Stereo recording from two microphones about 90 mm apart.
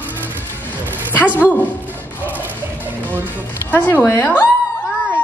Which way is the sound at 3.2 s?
20° left (ahead or behind).